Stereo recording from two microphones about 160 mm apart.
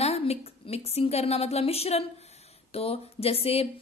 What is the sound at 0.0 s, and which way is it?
A woman's voice, 40° left (ahead or behind).